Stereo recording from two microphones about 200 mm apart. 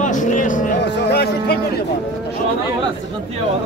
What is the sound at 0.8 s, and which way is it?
Speech, 55° left (ahead or behind).